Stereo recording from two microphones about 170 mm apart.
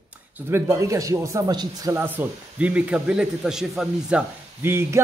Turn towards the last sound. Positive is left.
turn(degrees=-15)  # may be behind; listen again after turning